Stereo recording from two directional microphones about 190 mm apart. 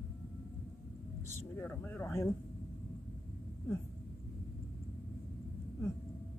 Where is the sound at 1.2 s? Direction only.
15° left (ahead or behind).